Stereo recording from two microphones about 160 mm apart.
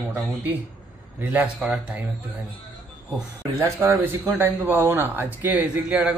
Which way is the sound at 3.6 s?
15° right (ahead or behind).